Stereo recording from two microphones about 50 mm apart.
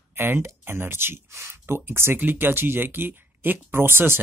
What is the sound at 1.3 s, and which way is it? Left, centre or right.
Speech, right.